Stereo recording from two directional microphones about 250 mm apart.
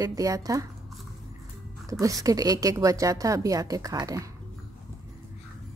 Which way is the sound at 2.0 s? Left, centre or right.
Centre.